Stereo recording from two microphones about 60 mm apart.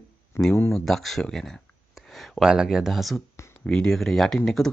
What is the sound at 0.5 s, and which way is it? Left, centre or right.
Speech, left.